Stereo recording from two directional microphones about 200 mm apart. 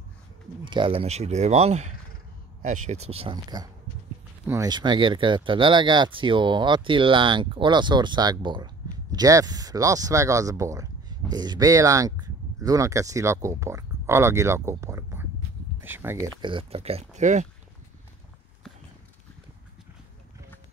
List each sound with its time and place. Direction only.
0.7 s speech: 25° right (ahead or behind)
16.3 s speech: 25° right (ahead or behind)